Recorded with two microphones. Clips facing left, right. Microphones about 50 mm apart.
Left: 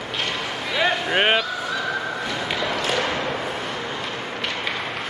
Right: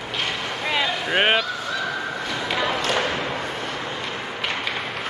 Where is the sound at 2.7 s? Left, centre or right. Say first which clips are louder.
Even; centre.